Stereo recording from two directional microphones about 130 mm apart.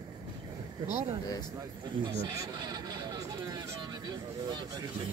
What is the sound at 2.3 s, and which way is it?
Speech, 30° right (ahead or behind).